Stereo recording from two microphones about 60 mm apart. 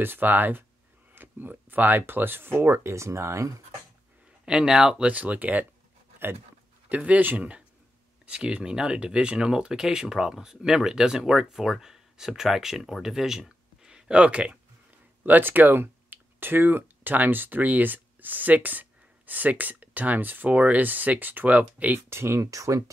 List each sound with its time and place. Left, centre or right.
0.0 s speech: right
4.5 s speech: centre
6.9 s speech: right
15.2 s speech: right
22.1 s speech: right
22.5 s speech: right